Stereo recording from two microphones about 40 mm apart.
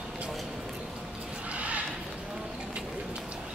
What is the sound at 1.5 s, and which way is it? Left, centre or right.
Horse, right.